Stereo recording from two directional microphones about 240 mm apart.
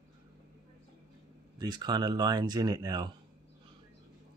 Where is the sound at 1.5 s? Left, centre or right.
Centre.